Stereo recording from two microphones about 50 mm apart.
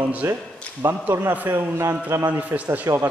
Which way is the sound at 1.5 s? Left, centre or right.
Right.